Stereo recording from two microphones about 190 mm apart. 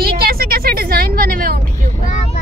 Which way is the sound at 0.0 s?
55° right (ahead or behind).